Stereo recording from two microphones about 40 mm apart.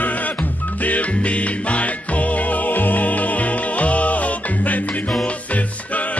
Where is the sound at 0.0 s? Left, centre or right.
Left.